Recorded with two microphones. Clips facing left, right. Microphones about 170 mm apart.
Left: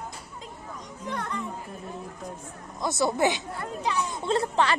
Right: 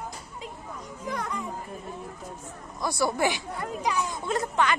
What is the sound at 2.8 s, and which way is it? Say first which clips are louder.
A woman's voice: left 2 dB; 20° left (ahead or behind).